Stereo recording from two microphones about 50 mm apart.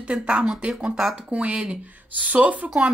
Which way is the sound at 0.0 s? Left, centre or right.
Right.